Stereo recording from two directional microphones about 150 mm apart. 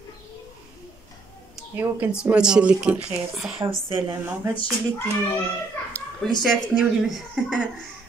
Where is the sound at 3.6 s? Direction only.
25° right (ahead or behind).